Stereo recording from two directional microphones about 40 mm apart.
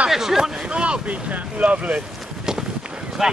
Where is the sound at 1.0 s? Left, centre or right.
Right.